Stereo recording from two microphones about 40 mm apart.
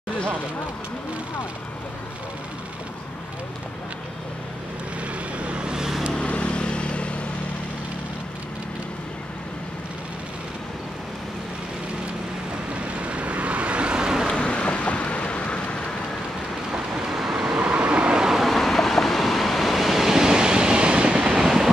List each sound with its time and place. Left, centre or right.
5.4 s vehicle: right
6.1 s vehicle: left
12.7 s vehicle: right
14.4 s vehicle: left
17.1 s vehicle: centre
17.6 s vehicle: right
18.4 s waves: centre; by 21.4 s right
21.4 s train: centre